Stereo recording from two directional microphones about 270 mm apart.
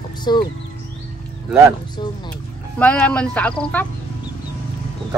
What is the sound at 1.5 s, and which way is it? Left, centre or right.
Speech, centre.